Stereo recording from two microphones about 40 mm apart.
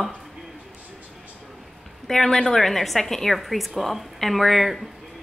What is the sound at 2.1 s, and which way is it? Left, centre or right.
A woman's voice, centre.